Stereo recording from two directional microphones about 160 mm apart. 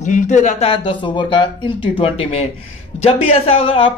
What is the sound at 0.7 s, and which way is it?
Speech, 35° left (ahead or behind).